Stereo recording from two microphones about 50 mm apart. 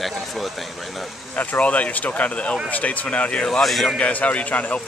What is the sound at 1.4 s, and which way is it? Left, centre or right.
Speech, left.